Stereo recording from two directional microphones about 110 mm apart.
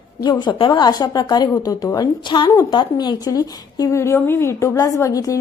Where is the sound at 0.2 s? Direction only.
40° left (ahead or behind).